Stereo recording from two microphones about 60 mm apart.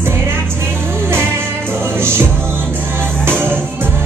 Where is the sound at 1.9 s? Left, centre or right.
Right.